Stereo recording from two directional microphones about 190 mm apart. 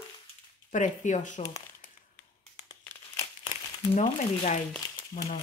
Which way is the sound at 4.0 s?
40° left (ahead or behind).